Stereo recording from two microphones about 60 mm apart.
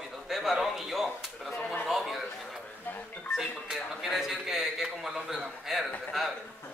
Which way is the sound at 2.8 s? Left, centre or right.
Left.